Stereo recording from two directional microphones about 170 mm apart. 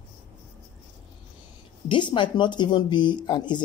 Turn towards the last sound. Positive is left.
turn(degrees=25)  # may be behind; listen again after turning